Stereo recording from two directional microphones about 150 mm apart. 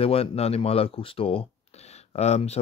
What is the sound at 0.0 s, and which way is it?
Speech, 40° left (ahead or behind).